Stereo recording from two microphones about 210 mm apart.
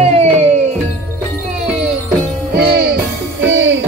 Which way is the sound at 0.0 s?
30° right (ahead or behind).